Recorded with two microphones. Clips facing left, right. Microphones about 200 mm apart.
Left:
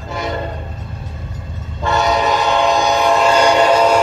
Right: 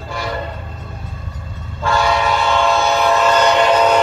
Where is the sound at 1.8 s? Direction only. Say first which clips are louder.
Left 1 dB; 20° left (ahead or behind).